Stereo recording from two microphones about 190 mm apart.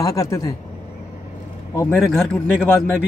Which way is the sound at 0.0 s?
20° left (ahead or behind).